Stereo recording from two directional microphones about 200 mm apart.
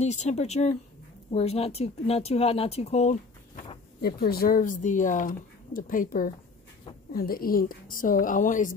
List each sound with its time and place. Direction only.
0.0 s speech: 35° left (ahead or behind)
4.0 s speech: 50° left (ahead or behind)